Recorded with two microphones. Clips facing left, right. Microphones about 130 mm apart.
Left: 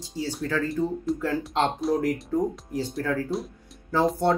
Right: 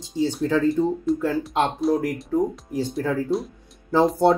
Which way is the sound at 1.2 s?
10° right (ahead or behind).